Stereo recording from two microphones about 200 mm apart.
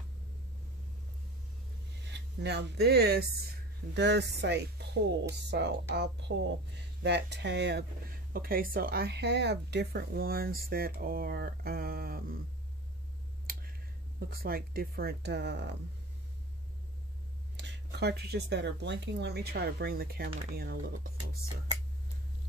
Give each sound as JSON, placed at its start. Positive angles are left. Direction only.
{"t": 2.0, "sound": "speech", "side_deg": -60}
{"t": 14.3, "sound": "speech", "side_deg": -50}
{"t": 17.6, "sound": "speech", "side_deg": -60}